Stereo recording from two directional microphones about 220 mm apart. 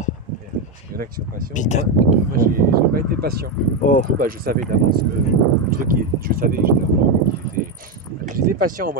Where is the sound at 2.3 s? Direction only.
40° right (ahead or behind).